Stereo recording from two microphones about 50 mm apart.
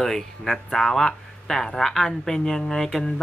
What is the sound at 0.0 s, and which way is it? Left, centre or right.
Speech, centre.